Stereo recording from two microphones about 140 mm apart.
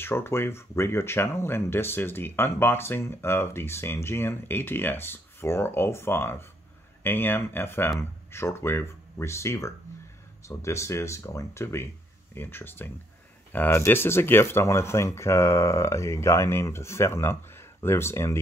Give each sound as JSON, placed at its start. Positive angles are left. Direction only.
{"t": 0.0, "sound": "speech", "side_deg": 15}